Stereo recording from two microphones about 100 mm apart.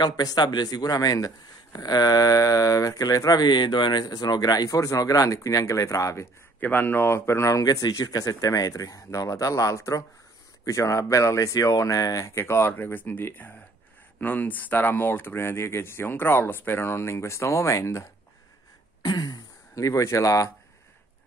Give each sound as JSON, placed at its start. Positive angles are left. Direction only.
{"t": 0.0, "sound": "a man's voice", "side_deg": 45}
{"t": 6.6, "sound": "a man's voice", "side_deg": 20}
{"t": 19.0, "sound": "speech", "side_deg": 40}